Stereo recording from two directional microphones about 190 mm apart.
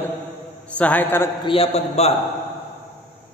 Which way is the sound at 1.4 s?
30° left (ahead or behind).